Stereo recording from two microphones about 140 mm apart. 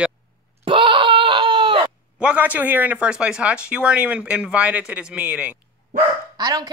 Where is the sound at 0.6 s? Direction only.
40° right (ahead or behind).